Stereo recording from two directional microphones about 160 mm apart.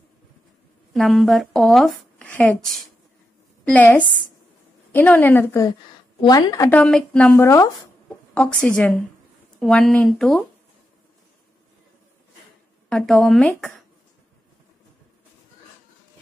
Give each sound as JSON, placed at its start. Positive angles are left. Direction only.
{"t": 0.9, "sound": "speech", "side_deg": 0}
{"t": 7.4, "sound": "speech", "side_deg": 20}
{"t": 8.4, "sound": "speech", "side_deg": 5}
{"t": 12.9, "sound": "speech", "side_deg": 0}